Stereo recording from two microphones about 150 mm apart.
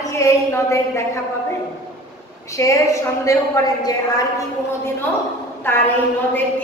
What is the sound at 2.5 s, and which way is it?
Speech, 20° left (ahead or behind).